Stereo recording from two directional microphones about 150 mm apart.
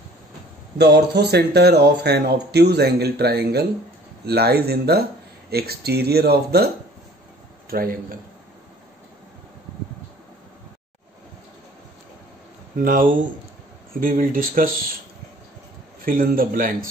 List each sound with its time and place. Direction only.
0.7 s speech: 90° right
7.7 s speech: 70° right (ahead or behind)
12.7 s speech: 70° right (ahead or behind)
16.1 s speech: 70° right (ahead or behind)